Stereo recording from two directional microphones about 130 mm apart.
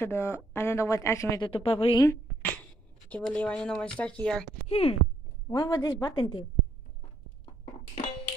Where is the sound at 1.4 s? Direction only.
45° left (ahead or behind).